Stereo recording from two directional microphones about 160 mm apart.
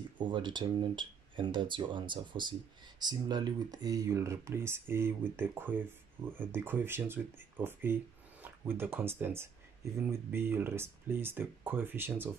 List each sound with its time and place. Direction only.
0.2 s speech: 30° right (ahead or behind); by 5.8 s 15° right (ahead or behind)
6.2 s speech: 25° right (ahead or behind)
6.5 s speech: 15° right (ahead or behind)